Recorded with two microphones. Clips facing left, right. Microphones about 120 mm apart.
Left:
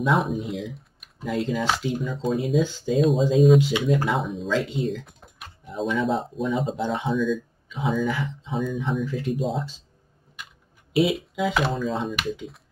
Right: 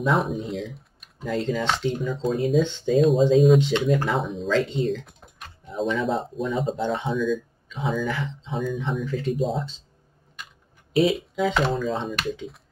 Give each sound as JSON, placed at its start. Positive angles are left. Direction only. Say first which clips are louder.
{"t": 0.0, "sound": "speech", "louder": "even", "side_deg": 0}
{"t": 10.9, "sound": "speech", "louder": "right 1 dB", "side_deg": 0}